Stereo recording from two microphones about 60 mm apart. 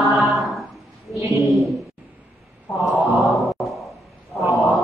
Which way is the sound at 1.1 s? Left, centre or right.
Right.